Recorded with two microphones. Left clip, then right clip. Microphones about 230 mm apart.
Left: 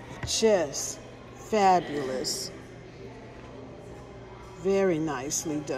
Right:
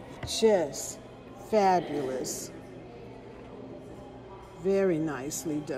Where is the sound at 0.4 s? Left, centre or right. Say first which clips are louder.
Left 1 dB; centre.